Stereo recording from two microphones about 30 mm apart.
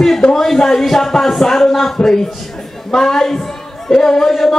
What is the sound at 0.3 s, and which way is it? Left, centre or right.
Speech, centre.